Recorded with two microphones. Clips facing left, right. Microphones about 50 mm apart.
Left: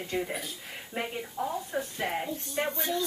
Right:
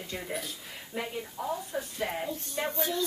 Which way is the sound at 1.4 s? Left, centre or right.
Left.